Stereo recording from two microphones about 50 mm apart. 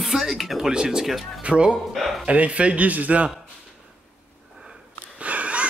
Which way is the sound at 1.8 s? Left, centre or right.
Centre.